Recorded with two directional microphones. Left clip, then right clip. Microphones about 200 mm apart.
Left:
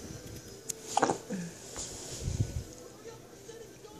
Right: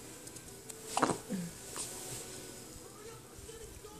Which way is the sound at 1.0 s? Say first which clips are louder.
Left 2 dB; 20° right (ahead or behind).